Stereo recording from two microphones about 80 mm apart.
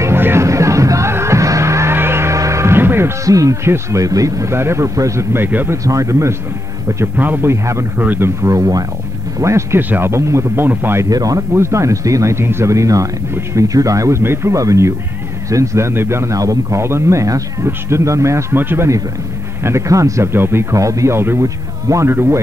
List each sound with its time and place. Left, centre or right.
0.0 s music: right
3.3 s speech: right
5.9 s speech: right
7.2 s speech: right
8.4 s speech: right
9.8 s speech: right
11.1 s speech: right
11.5 s speech: right
18.6 s speech: right
19.6 s speech: right
20.3 s speech: right
22.1 s speech: right